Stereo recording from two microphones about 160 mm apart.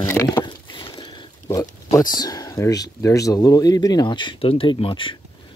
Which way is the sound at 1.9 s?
25° left (ahead or behind).